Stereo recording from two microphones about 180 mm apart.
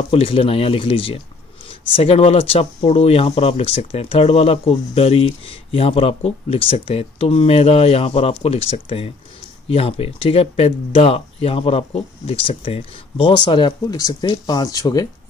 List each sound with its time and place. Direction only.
0.1 s speech: 30° left (ahead or behind)